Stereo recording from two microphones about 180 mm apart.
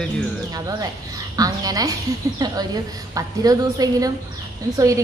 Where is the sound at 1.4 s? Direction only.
20° right (ahead or behind).